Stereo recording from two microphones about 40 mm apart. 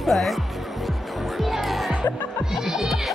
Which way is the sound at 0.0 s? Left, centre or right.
Centre.